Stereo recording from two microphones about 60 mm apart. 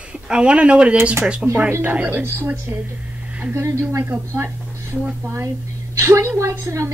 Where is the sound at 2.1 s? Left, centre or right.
Right.